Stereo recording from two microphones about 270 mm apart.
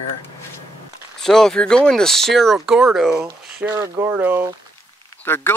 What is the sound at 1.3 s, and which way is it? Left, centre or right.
Speech, centre.